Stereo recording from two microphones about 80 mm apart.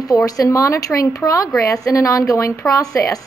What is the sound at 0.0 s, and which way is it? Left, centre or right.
A woman's voice, left.